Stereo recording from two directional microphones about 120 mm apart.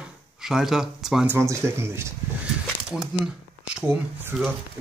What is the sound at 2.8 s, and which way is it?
Speech, 5° right (ahead or behind).